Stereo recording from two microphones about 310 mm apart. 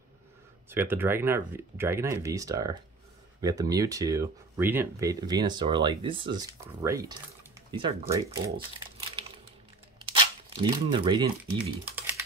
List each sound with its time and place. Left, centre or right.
0.7 s speech: centre
11.8 s typing: centre